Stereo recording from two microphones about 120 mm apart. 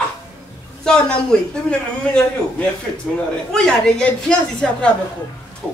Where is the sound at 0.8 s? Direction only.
5° left (ahead or behind).